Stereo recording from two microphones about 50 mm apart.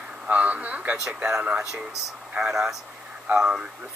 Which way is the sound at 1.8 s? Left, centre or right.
Centre.